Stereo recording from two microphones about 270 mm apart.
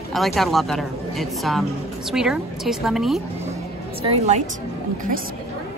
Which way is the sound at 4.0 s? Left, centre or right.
Right.